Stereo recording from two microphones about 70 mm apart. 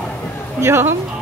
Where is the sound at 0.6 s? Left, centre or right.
Right.